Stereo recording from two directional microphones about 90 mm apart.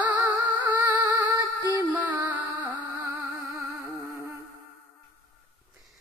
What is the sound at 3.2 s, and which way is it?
Music, 40° right (ahead or behind).